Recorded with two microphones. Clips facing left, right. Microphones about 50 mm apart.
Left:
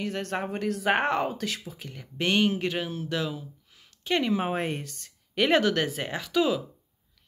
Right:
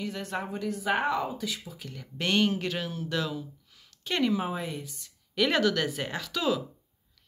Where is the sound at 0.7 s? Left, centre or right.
Left.